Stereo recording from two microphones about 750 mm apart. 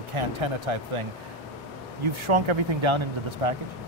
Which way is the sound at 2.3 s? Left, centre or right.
Right.